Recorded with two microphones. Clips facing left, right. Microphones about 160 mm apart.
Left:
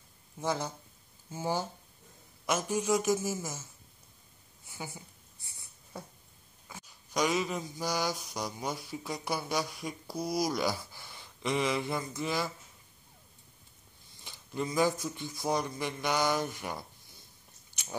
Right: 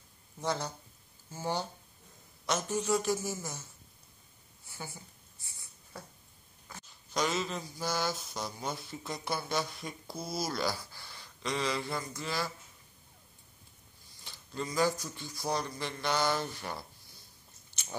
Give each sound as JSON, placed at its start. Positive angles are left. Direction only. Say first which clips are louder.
{"t": 0.4, "sound": "speech", "louder": "left 1 dB", "side_deg": 10}
{"t": 4.6, "sound": "speech", "louder": "left 2 dB", "side_deg": 15}
{"t": 6.7, "sound": "speech", "louder": "left 1 dB", "side_deg": 10}
{"t": 14.2, "sound": "speech", "louder": "left 3 dB", "side_deg": 15}